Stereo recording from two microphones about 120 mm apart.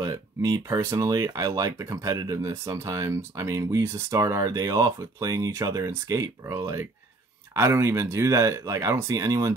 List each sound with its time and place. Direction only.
0.0 s speech: 30° right (ahead or behind)